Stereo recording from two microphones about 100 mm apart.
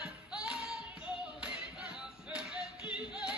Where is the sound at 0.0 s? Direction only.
5° right (ahead or behind).